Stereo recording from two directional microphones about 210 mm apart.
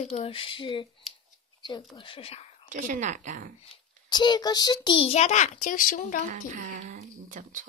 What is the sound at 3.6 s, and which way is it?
A child's voice, 25° left (ahead or behind).